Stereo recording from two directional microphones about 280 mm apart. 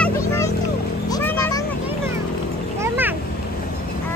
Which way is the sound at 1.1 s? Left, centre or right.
Centre.